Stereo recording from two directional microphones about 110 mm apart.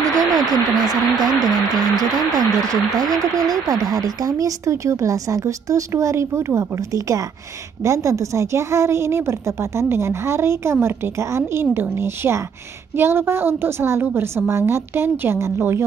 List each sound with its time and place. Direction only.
0.0 s a woman's voice: 35° right (ahead or behind)